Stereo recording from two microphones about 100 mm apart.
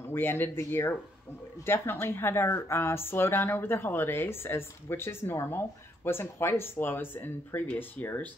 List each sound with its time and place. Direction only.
0.1 s a woman's voice: 20° left (ahead or behind)